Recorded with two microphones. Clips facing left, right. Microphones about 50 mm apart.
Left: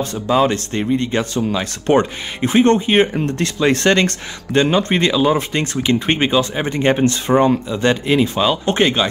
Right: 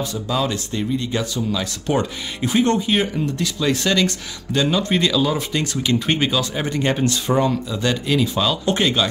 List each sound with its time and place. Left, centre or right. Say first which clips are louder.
0.1 s speech: left 7 dB; left